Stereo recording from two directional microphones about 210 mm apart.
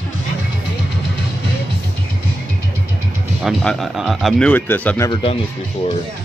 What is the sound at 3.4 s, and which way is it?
Speech, centre (ahead or behind).